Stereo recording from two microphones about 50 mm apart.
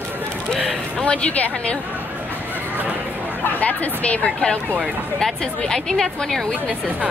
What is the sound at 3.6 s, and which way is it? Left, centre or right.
Speech, left.